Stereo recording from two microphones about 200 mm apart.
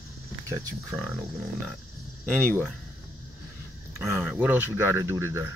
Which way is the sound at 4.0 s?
10° right (ahead or behind).